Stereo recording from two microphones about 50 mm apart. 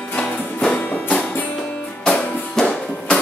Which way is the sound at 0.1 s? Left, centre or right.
Left.